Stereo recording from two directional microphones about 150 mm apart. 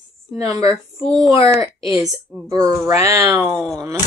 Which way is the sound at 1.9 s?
Centre (ahead or behind).